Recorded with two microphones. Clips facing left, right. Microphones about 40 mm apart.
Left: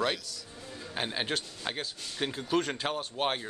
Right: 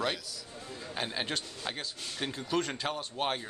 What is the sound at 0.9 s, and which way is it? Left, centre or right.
Speech, centre.